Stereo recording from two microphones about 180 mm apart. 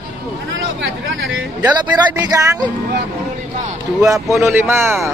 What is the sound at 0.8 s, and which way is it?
Speech, 90° right.